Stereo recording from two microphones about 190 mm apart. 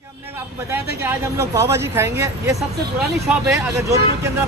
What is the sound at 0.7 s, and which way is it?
Speech, 15° right (ahead or behind).